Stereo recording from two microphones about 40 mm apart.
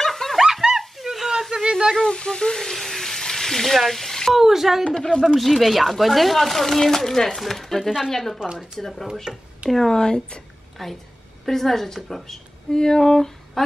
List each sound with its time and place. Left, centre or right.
0.0 s a sound: centre
0.4 s a sound: centre
2.0 s speech: left
2.5 s frying: centre
4.3 s speech: centre
4.9 s a woman's voice: centre
5.2 s speech: centre
8.4 s speech: centre
8.7 s a woman's voice: centre
9.3 s speech: centre
9.7 s speech: centre
9.9 s speech: left
10.8 s a woman's voice: centre
12.7 s speech: centre